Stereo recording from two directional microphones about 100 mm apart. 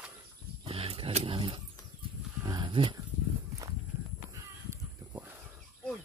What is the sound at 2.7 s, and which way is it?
Speech, 65° right (ahead or behind).